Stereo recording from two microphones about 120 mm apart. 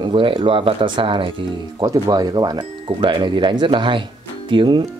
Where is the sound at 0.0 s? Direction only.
45° right (ahead or behind).